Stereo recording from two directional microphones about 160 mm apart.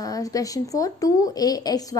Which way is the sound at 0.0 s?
20° left (ahead or behind).